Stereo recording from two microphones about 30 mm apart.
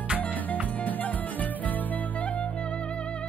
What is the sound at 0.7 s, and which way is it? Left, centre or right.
Music, left.